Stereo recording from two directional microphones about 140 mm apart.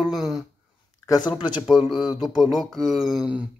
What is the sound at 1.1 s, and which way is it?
Speech, 30° left (ahead or behind).